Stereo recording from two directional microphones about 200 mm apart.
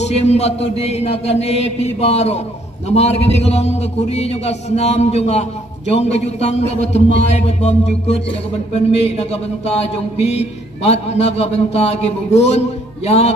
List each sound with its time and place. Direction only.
0.0 s a man's voice: 30° left (ahead or behind)